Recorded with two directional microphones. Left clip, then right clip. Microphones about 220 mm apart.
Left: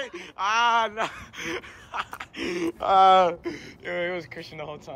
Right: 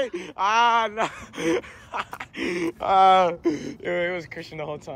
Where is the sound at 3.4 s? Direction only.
Centre (ahead or behind).